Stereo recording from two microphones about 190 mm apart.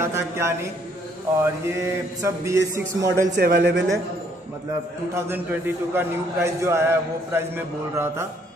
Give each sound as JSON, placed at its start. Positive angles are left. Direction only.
{"t": 0.0, "sound": "a man's voice", "side_deg": -15}
{"t": 3.3, "sound": "a man's voice", "side_deg": -55}
{"t": 5.1, "sound": "a man's voice", "side_deg": -10}